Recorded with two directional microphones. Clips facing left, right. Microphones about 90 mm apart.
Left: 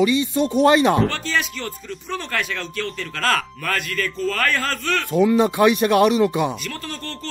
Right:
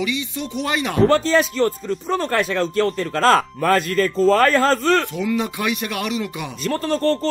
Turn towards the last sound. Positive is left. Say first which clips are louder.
# right 13 dB
turn(degrees=-35)  # may be behind; listen again after turning